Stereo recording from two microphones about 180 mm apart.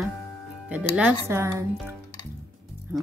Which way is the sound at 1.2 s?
15° right (ahead or behind).